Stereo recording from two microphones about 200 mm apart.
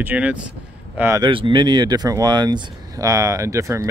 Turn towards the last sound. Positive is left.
turn(degrees=-15)  # may be behind; listen again after turning